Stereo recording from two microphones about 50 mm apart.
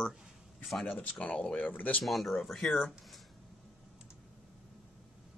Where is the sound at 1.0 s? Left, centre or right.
Left.